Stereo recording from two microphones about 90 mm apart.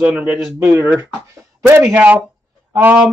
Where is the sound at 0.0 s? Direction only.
15° right (ahead or behind).